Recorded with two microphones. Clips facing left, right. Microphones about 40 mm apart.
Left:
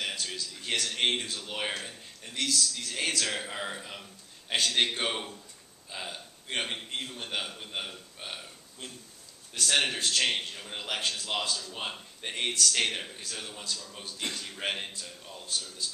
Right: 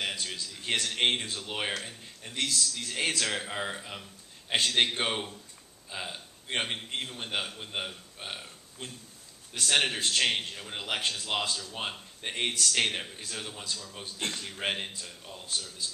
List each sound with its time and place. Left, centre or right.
0.0 s a sound: centre
0.8 s a man's voice: centre
2.3 s a man's voice: right
2.9 s a man's voice: centre
11.7 s a man's voice: centre
14.2 s a man's voice: right
14.5 s a man's voice: centre